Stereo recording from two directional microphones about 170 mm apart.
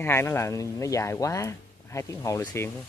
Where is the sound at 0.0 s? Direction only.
15° left (ahead or behind).